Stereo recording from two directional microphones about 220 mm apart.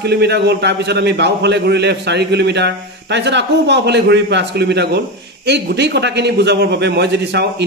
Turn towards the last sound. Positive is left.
turn(degrees=-50)  # may be behind; listen again after turning